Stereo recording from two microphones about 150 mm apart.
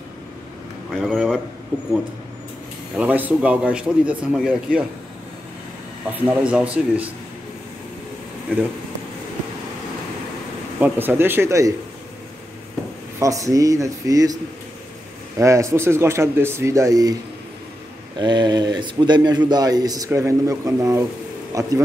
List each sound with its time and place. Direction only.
0.9 s a man's voice: centre (ahead or behind)
3.0 s a man's voice: 10° right (ahead or behind)
6.1 s a man's voice: 10° right (ahead or behind)
10.8 s a man's voice: 15° right (ahead or behind)
13.2 s speech: 20° right (ahead or behind)
18.2 s speech: 30° right (ahead or behind)